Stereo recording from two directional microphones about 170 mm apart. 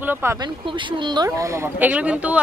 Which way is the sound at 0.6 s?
30° right (ahead or behind).